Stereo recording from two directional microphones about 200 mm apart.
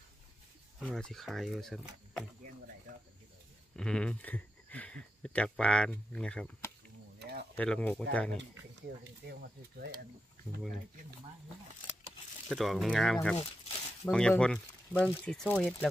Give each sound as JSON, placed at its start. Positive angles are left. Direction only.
{"t": 0.7, "sound": "speech", "side_deg": 5}
{"t": 3.7, "sound": "speech", "side_deg": 5}
{"t": 7.2, "sound": "a sound", "side_deg": -55}
{"t": 7.5, "sound": "speech", "side_deg": 5}
{"t": 12.4, "sound": "speech", "side_deg": 0}